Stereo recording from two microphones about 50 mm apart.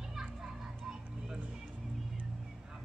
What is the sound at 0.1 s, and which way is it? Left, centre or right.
Children playing, centre.